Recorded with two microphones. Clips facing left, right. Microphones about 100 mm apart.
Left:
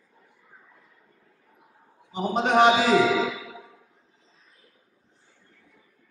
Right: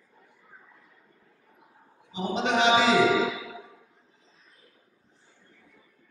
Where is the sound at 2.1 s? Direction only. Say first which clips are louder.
Left 5 dB; 45° left (ahead or behind).